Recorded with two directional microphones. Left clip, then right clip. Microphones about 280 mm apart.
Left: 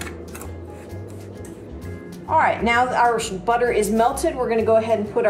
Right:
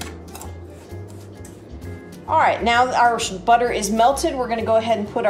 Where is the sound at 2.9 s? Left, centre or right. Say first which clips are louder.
Right 1 dB; centre.